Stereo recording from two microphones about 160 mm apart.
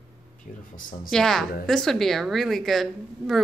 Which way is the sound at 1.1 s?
Centre (ahead or behind).